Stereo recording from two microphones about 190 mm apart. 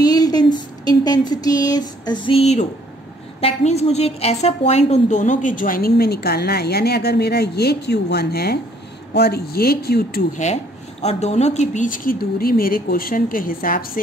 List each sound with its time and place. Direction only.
0.0 s a sound: 20° left (ahead or behind)
3.3 s a woman's voice: 35° left (ahead or behind); by 10.2 s 55° left (ahead or behind)
10.3 s a woman's voice: 35° left (ahead or behind)